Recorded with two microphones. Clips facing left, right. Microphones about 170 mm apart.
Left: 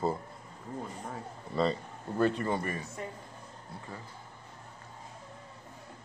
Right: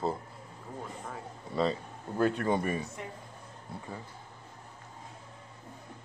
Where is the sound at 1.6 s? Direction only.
5° right (ahead or behind).